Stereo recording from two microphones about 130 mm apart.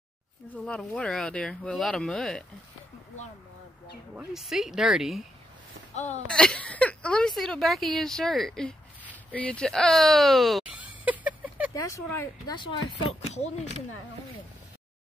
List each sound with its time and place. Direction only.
0.7 s a woman's voice: 10° left (ahead or behind)
4.1 s a woman's voice: 5° right (ahead or behind)
5.9 s speech: 60° left (ahead or behind)
6.2 s a woman's voice: 5° left (ahead or behind)
10.8 s a sound: 10° right (ahead or behind)
11.8 s speech: 25° left (ahead or behind)
13.3 s speech: 60° left (ahead or behind)